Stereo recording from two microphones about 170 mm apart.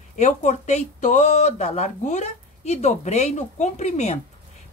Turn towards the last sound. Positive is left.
turn(degrees=40)  # may be behind; listen again after turning